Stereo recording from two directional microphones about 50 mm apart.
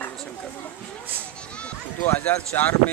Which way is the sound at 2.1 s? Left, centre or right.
Left.